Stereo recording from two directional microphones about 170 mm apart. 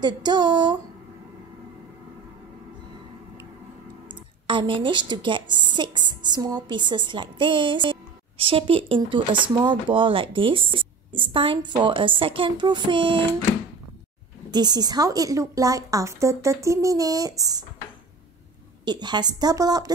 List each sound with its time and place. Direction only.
0.0 s a woman's voice: 25° right (ahead or behind)
4.5 s a woman's voice: 30° right (ahead or behind)
14.5 s a woman's voice: 25° right (ahead or behind)
18.9 s a woman's voice: 25° right (ahead or behind)